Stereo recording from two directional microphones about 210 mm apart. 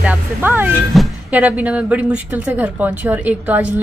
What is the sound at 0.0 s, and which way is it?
Speech, 5° right (ahead or behind).